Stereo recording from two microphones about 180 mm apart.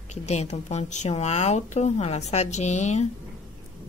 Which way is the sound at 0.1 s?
40° left (ahead or behind).